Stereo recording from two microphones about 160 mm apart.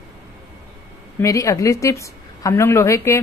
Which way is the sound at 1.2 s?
20° left (ahead or behind).